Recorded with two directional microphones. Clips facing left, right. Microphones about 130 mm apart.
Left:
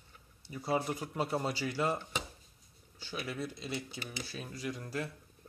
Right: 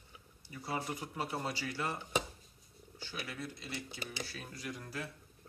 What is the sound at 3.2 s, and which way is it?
Speech, 25° left (ahead or behind).